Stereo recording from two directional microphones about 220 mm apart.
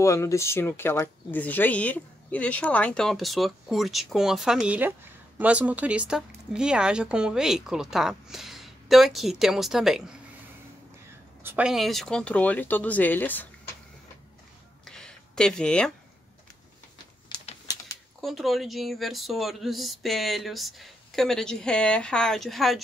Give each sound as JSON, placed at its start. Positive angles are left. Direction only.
{"t": 0.0, "sound": "speech", "side_deg": 15}
{"t": 11.4, "sound": "speech", "side_deg": -5}
{"t": 14.9, "sound": "a sound", "side_deg": 5}
{"t": 17.3, "sound": "crumpling", "side_deg": 15}
{"t": 18.2, "sound": "speech", "side_deg": 0}